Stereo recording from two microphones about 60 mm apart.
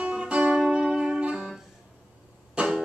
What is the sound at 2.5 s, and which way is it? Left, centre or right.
Music, centre.